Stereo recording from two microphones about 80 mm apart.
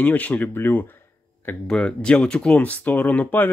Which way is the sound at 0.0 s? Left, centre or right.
Centre.